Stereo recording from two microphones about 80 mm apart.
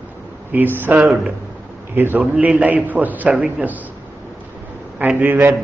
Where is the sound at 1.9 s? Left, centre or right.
Right.